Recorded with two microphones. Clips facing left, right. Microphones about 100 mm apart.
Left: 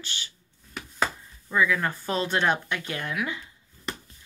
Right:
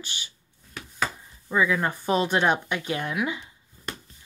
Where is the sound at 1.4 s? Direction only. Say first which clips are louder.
Right 1 dB; 20° right (ahead or behind).